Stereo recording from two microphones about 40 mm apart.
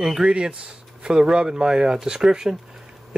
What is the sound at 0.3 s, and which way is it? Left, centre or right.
Speech, right.